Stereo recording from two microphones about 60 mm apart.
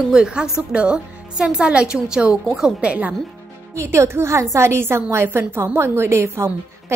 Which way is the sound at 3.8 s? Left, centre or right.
Right.